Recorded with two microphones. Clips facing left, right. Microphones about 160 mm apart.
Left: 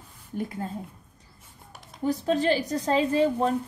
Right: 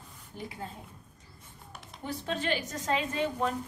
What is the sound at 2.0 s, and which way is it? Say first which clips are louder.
A woman's voice: left 10 dB; 40° left (ahead or behind).